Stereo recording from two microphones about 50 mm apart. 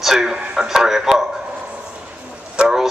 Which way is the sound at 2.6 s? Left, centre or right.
Centre.